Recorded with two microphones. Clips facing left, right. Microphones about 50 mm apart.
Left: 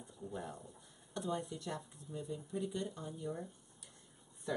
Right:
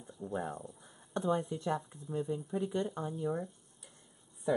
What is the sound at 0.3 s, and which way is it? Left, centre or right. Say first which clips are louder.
Speech: right 8 dB; right.